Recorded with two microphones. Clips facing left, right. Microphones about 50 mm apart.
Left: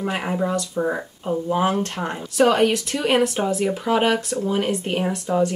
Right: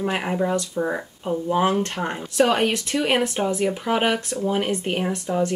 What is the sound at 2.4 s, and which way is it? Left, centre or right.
Speech, centre.